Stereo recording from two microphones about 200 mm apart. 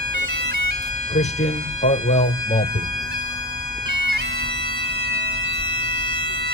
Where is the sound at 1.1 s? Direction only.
35° left (ahead or behind).